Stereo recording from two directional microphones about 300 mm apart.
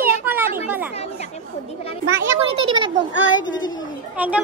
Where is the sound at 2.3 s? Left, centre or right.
Centre.